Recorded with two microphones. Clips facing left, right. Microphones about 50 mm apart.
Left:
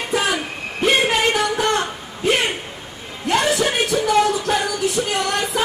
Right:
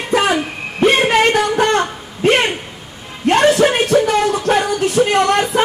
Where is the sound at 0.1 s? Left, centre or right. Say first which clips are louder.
Right 6 dB; right.